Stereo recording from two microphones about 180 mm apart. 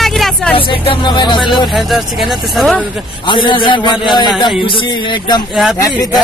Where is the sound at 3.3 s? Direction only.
25° left (ahead or behind).